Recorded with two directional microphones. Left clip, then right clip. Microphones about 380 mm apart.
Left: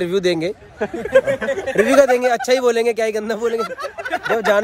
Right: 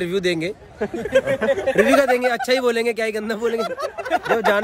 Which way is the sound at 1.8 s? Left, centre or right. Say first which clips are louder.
Left 4 dB; centre.